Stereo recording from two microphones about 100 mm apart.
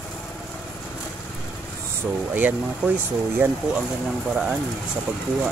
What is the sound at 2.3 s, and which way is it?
Speech, 15° right (ahead or behind).